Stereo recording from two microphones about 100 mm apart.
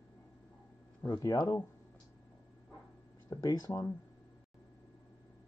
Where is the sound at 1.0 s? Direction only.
40° left (ahead or behind).